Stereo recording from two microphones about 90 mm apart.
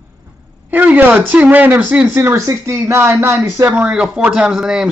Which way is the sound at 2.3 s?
35° right (ahead or behind).